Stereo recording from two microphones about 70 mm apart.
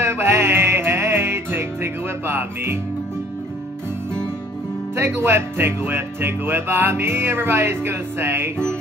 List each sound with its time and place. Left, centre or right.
0.0 s music: right
4.9 s music: right